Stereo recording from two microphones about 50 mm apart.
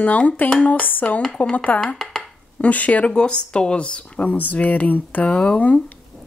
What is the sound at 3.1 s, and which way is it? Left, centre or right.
A woman's voice, centre.